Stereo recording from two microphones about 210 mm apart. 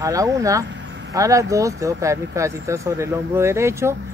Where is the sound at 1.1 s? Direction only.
15° right (ahead or behind).